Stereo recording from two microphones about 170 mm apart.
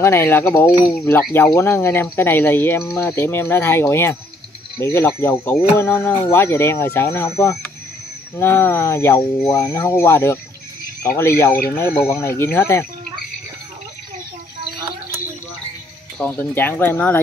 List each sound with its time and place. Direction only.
0.0 s speech: 15° left (ahead or behind)
16.2 s speech: 10° left (ahead or behind)